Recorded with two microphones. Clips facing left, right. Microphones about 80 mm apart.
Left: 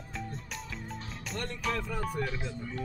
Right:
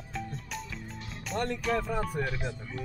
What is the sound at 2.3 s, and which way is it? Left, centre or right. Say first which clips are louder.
Speech: right 1 dB; left.